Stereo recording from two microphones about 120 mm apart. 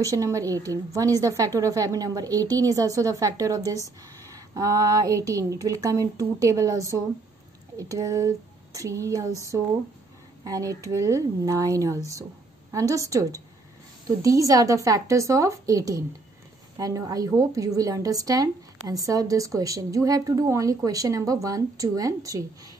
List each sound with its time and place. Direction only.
0.1 s a woman's voice: 30° right (ahead or behind)
10.4 s a woman's voice: 30° right (ahead or behind)